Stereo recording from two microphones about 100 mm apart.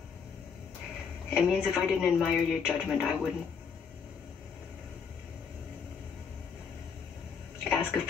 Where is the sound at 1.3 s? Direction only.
10° right (ahead or behind).